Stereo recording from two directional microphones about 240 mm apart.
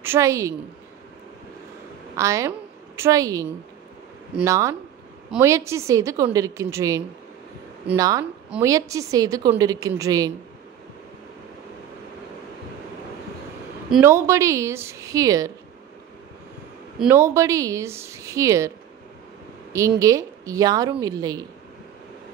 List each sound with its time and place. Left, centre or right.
0.0 s a woman's voice: centre
2.1 s a woman's voice: centre
8.0 s a woman's voice: centre
13.8 s a woman's voice: centre
17.0 s a woman's voice: centre
20.0 s a woman's voice: centre